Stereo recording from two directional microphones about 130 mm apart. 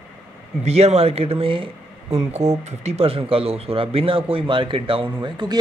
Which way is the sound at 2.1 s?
55° right (ahead or behind).